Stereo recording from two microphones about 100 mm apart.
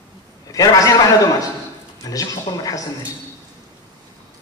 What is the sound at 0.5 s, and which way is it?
Speech, 35° left (ahead or behind).